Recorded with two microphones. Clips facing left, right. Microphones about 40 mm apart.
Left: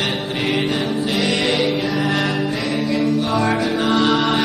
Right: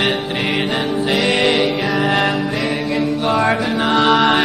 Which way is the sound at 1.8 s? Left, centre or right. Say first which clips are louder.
Right 3 dB; centre.